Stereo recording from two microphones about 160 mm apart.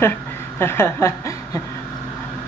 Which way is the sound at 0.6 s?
15° left (ahead or behind).